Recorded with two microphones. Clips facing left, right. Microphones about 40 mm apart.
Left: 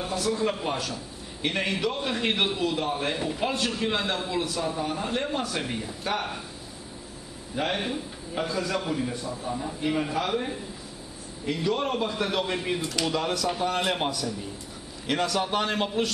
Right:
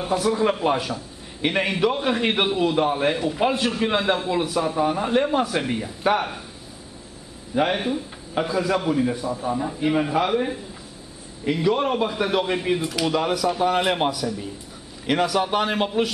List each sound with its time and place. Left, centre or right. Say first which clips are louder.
0.0 s a man's voice: right 6 dB; centre
7.5 s a man's voice: right 6 dB; centre